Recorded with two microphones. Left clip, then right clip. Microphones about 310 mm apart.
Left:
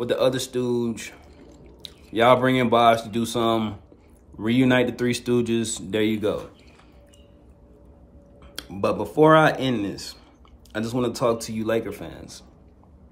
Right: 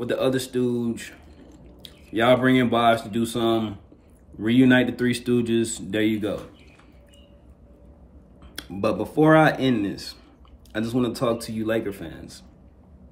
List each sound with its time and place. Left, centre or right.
0.0 s speech: centre
1.0 s drip: centre
3.3 s speech: centre
8.5 s speech: centre